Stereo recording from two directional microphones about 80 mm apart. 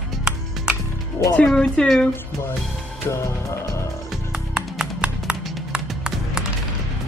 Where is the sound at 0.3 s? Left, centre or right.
Centre.